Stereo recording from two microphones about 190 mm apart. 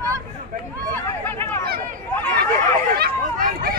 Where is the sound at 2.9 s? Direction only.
50° right (ahead or behind).